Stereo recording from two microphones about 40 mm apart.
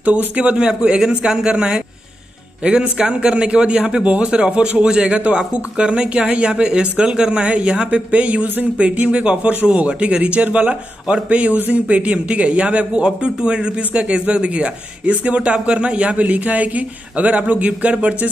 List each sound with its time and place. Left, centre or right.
0.4 s speech: right
11.2 s speech: right